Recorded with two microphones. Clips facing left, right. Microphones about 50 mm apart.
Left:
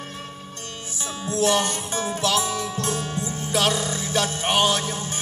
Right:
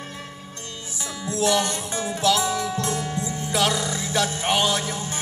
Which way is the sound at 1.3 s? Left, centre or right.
Left.